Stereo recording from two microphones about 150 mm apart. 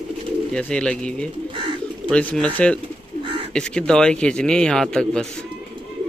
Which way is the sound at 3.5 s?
5° left (ahead or behind).